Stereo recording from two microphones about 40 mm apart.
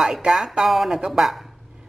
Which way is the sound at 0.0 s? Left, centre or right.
Centre.